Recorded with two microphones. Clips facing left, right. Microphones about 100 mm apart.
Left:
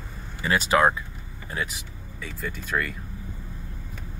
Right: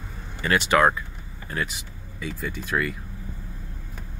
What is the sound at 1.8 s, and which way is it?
Speech, 5° right (ahead or behind).